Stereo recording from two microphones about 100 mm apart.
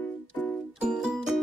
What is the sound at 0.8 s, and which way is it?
Music, 10° right (ahead or behind).